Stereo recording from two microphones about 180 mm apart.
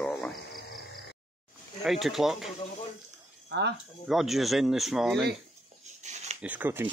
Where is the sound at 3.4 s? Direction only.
70° right (ahead or behind).